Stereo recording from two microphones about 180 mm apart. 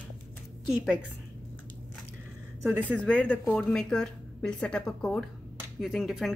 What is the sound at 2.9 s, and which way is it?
A woman's voice, 5° left (ahead or behind).